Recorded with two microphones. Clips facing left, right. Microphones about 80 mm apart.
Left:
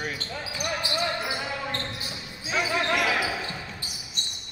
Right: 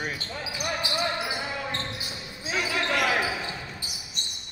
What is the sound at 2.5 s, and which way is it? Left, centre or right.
Speech, left.